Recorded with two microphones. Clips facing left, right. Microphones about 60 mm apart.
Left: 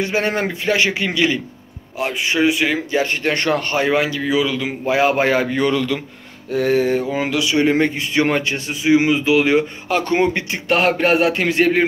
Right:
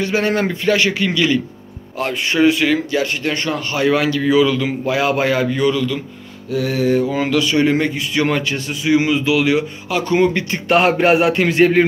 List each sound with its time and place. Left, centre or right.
0.0 s a man's voice: left
2.0 s speech: centre
2.9 s a man's voice: left
3.7 s a man's voice: left
4.2 s speech: centre
4.8 s a man's voice: left
7.1 s a man's voice: centre; by 10.1 s left
10.1 s a man's voice: left
10.7 s a sound: centre